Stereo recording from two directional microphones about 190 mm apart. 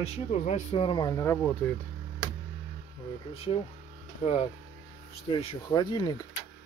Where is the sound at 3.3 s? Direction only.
30° left (ahead or behind).